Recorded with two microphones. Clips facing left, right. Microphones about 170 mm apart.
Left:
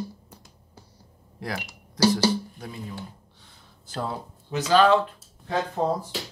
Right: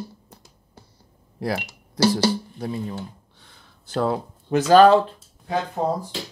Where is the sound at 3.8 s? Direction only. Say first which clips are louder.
Right 8 dB; 70° right (ahead or behind); by 4.9 s 45° right (ahead or behind).